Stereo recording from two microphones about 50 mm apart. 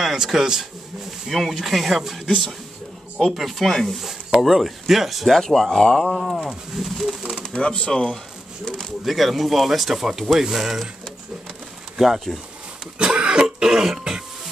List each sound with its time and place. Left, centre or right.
0.0 s a man's voice: centre
1.3 s speech: centre
3.2 s speech: centre
5.8 s speech: centre
6.0 s speech: centre
7.5 s speech: centre
9.0 s speech: centre
12.0 s speech: centre
13.0 s cough: centre